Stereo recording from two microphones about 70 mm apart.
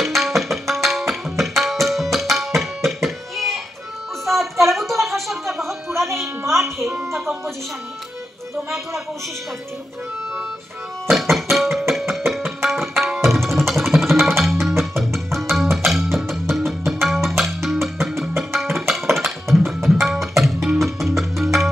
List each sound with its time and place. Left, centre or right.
0.0 s tabla: centre
2.1 s music: centre
4.3 s a sound: centre
6.2 s music: right
7.2 s music: centre
11.1 s music: centre
12.6 s tabla: centre
15.1 s music: centre
18.5 s tabla: centre
20.8 s music: centre